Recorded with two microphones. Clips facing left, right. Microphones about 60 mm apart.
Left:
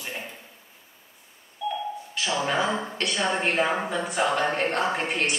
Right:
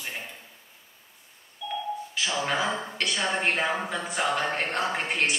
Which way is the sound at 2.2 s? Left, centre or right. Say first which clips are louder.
Left 3 dB; centre.